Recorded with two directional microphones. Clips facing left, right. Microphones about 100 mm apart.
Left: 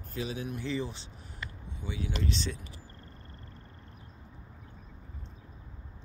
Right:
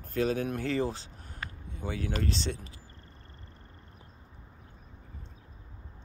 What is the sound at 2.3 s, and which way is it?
Speech, 35° right (ahead or behind).